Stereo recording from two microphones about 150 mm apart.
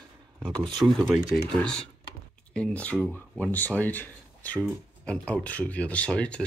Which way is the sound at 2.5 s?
10° left (ahead or behind).